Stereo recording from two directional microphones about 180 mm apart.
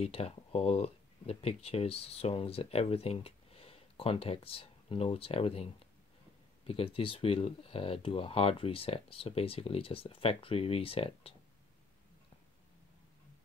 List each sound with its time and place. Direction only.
0.0 s speech: 35° left (ahead or behind)
6.7 s speech: 30° left (ahead or behind)